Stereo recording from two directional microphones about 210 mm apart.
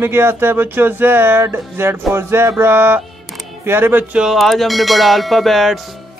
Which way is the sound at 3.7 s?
10° right (ahead or behind).